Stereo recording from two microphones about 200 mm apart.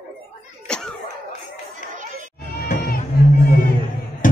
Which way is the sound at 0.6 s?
5° left (ahead or behind).